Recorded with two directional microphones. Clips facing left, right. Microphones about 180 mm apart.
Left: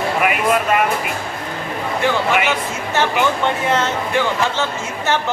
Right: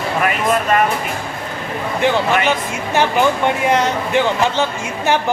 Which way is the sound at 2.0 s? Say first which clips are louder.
Right 3 dB; 20° right (ahead or behind).